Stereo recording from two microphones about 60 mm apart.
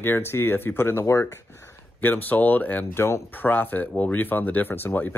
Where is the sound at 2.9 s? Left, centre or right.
Left.